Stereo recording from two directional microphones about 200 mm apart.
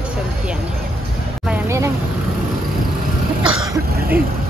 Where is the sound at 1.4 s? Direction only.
10° right (ahead or behind).